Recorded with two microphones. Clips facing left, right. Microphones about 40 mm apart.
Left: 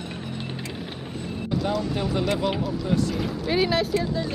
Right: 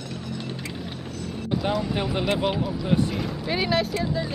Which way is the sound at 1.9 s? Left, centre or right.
Right.